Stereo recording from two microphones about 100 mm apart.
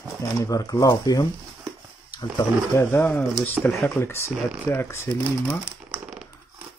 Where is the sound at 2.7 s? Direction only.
20° left (ahead or behind).